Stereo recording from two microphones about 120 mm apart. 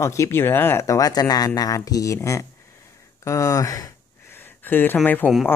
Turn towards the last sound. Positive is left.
turn(degrees=15)  # may be behind; listen again after turning